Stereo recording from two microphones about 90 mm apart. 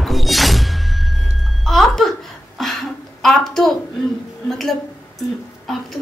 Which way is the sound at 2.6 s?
Centre (ahead or behind).